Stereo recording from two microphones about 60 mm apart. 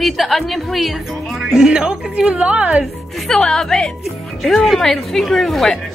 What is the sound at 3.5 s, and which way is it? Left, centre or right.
A woman's voice, centre.